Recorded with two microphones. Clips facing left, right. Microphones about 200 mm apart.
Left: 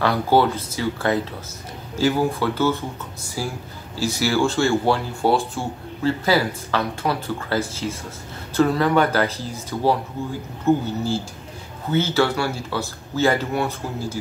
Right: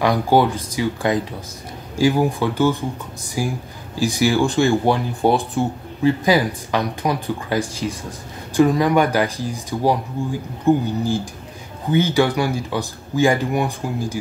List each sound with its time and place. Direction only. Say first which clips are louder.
0.0 s speech: right 2 dB; 15° right (ahead or behind)